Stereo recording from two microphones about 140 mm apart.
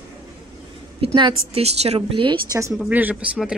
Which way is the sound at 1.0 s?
40° right (ahead or behind).